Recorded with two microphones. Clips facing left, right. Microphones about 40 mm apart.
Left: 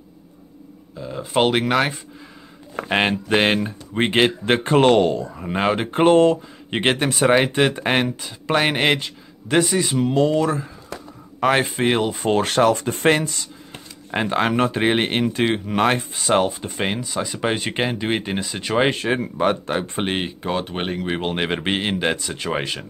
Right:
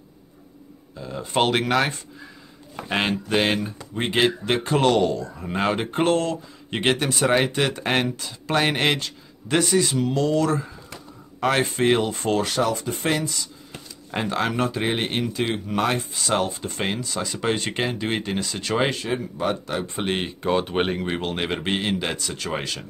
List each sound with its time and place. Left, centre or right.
0.9 s speech: centre
2.9 s speech: left
5.3 s speech: centre
6.1 s speech: left
10.4 s speech: centre
12.4 s speech: left
14.1 s speech: left
18.9 s speech: left
20.1 s speech: centre
21.1 s speech: left